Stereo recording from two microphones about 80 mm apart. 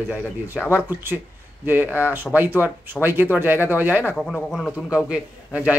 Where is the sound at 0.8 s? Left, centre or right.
Right.